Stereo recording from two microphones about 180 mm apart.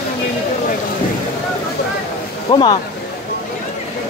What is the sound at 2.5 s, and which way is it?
Speech, 25° left (ahead or behind).